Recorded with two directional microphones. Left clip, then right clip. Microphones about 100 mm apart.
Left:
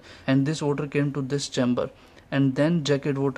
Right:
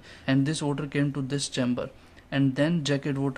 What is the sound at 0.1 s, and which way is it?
Speech, 35° left (ahead or behind).